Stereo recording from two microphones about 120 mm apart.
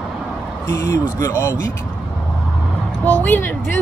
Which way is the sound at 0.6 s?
25° left (ahead or behind).